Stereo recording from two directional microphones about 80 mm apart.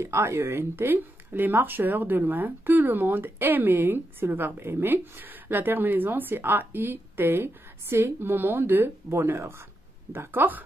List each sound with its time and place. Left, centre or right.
0.0 s speech: right